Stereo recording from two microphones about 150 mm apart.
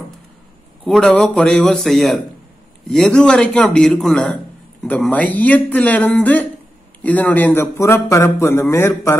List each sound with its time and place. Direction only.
0.8 s a man's voice: 5° left (ahead or behind)